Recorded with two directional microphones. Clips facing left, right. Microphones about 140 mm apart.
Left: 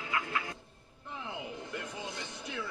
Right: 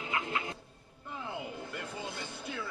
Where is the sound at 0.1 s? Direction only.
25° right (ahead or behind).